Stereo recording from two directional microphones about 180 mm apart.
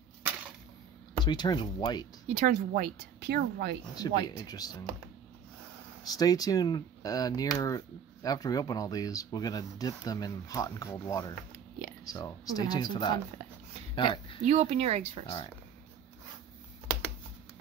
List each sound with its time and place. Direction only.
1.1 s speech: 25° left (ahead or behind)
2.2 s a woman's voice: 45° right (ahead or behind); by 3.7 s 65° right (ahead or behind)
3.9 s speech: 20° left (ahead or behind)
6.1 s speech: 20° left (ahead or behind)
13.9 s a sound: 25° left (ahead or behind)
14.4 s speech: 40° right (ahead or behind)
15.2 s speech: 30° left (ahead or behind)